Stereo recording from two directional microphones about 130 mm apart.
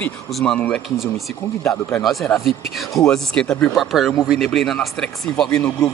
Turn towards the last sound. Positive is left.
turn(degrees=5)  # may be behind; listen again after turning